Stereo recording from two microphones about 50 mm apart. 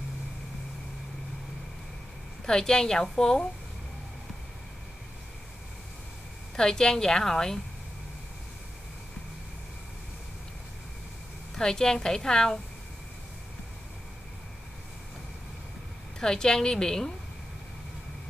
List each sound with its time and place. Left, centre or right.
2.4 s a woman's voice: centre
6.5 s a woman's voice: centre
11.5 s a woman's voice: centre
16.2 s a woman's voice: centre